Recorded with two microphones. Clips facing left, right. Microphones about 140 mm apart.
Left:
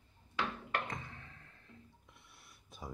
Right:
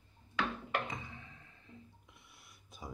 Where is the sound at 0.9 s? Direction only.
5° right (ahead or behind).